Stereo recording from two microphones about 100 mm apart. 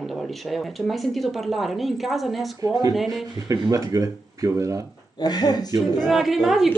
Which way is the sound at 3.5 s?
35° right (ahead or behind).